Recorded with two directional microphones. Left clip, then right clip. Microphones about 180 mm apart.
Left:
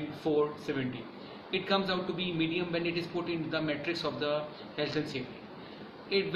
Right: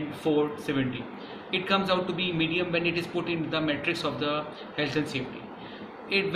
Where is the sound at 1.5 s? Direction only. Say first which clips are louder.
Right 5 dB; 20° left (ahead or behind).